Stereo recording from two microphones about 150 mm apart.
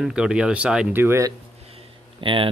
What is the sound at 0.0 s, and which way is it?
Speech, 5° right (ahead or behind).